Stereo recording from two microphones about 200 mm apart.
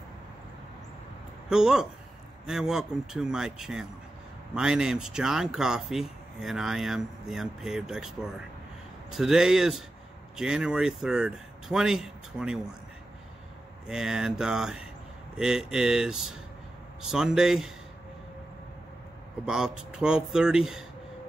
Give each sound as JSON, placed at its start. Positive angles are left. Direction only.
{"t": 1.5, "sound": "speech", "side_deg": -5}
{"t": 9.1, "sound": "speech", "side_deg": -5}
{"t": 13.8, "sound": "speech", "side_deg": -5}
{"t": 19.4, "sound": "speech", "side_deg": -5}